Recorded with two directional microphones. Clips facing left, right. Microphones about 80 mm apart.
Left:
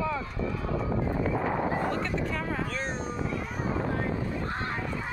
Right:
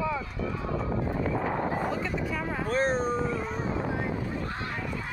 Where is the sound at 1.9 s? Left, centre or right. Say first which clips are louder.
Even; centre.